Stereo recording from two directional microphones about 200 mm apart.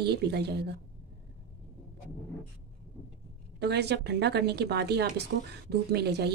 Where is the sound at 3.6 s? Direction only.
55° right (ahead or behind).